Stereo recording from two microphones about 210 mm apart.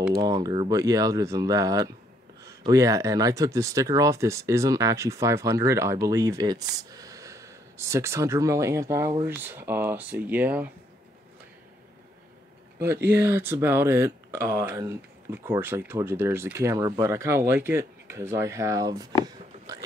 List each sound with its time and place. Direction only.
0.1 s speech: 20° right (ahead or behind)
12.8 s speech: 10° right (ahead or behind)